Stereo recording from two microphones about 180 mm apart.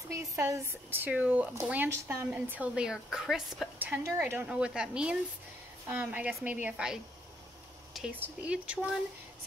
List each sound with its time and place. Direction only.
0.1 s speech: 15° right (ahead or behind)